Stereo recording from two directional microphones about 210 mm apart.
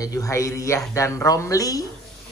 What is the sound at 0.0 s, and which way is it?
Speech, 15° left (ahead or behind).